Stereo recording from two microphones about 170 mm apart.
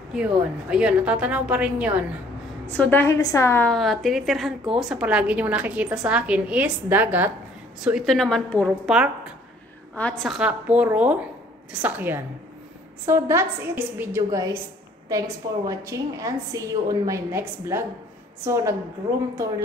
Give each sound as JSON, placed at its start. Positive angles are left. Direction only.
{"t": 0.1, "sound": "a woman's voice", "side_deg": -5}
{"t": 2.6, "sound": "a woman's voice", "side_deg": 10}
{"t": 8.8, "sound": "a woman's voice", "side_deg": -5}
{"t": 9.9, "sound": "a woman's voice", "side_deg": 5}